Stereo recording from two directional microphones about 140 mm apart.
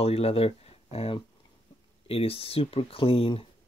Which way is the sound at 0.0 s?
45° left (ahead or behind).